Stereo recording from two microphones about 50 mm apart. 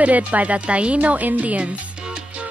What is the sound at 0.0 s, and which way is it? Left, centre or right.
Speech, right.